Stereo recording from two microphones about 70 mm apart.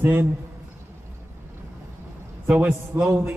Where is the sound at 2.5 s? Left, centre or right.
Right.